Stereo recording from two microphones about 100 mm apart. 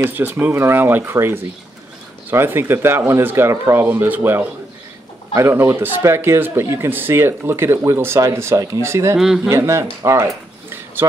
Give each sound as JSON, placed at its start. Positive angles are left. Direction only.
{"t": 0.0, "sound": "speech", "side_deg": -20}
{"t": 9.2, "sound": "speech", "side_deg": -5}
{"t": 9.5, "sound": "speech", "side_deg": -25}